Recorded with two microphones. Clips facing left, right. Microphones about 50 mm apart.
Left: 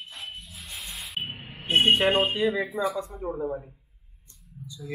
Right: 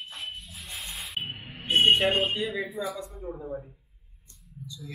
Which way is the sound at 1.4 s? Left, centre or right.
Left.